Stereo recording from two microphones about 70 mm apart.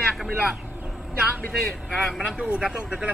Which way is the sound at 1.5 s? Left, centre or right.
Centre.